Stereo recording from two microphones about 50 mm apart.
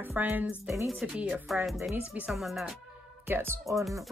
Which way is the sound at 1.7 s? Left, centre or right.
Centre.